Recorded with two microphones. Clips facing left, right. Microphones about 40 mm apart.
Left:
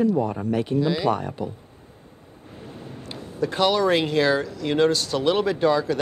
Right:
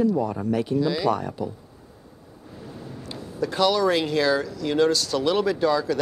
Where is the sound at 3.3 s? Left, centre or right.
Left.